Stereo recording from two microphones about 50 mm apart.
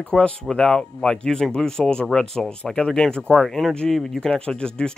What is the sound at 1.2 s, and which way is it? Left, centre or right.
Speech, centre.